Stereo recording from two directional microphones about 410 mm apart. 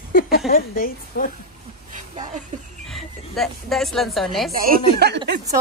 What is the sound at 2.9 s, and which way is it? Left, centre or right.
Speech, centre.